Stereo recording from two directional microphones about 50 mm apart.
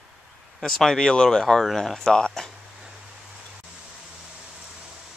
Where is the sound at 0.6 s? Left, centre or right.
Centre.